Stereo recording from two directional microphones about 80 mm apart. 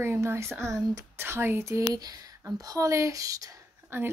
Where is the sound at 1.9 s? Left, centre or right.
Right.